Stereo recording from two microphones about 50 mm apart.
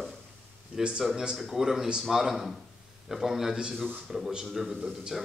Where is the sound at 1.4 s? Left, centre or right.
Centre.